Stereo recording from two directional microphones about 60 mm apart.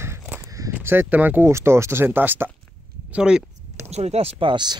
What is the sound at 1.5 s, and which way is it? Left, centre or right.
Speech, right.